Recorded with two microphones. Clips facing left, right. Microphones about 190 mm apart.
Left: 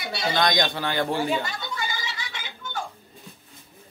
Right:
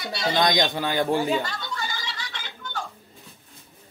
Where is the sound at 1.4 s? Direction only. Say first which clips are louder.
Even; 10° left (ahead or behind).